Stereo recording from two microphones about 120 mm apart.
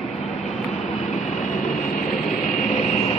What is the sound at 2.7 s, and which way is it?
Vehicle, 75° left (ahead or behind).